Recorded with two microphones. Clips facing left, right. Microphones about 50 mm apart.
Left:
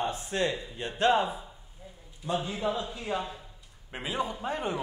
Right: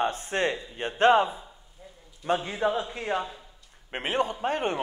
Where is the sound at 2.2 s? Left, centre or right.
Right.